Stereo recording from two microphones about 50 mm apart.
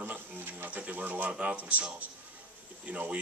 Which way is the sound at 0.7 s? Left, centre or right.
Right.